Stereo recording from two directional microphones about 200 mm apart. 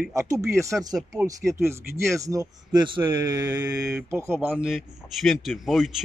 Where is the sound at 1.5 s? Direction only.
15° right (ahead or behind).